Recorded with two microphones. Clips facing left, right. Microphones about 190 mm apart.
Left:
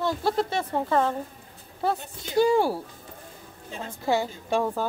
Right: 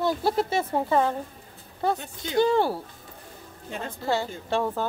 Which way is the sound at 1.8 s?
5° left (ahead or behind).